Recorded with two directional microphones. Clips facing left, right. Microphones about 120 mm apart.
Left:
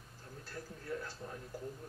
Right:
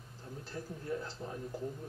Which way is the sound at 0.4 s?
20° right (ahead or behind).